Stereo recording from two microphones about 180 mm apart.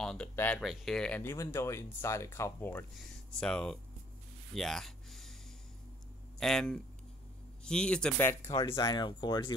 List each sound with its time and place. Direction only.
0.0 s speech: 5° left (ahead or behind)
4.6 s a sound: centre (ahead or behind)
6.4 s speech: 5° left (ahead or behind); by 9.5 s 25° left (ahead or behind)